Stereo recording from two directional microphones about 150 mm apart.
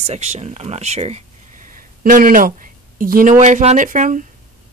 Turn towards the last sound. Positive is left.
turn(degrees=-60)  # may be behind; listen again after turning